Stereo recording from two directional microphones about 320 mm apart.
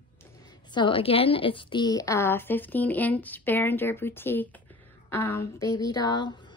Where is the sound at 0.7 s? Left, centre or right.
Centre.